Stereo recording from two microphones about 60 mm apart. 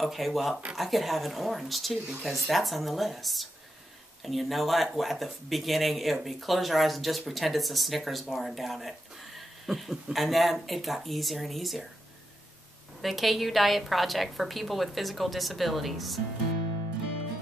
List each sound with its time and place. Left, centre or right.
0.0 s speech: centre
13.0 s speech: centre